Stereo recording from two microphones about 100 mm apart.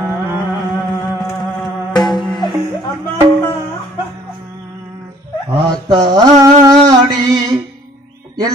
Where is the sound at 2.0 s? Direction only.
Centre (ahead or behind).